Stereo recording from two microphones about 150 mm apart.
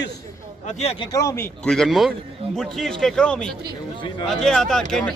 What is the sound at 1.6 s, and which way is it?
A man's voice, centre (ahead or behind).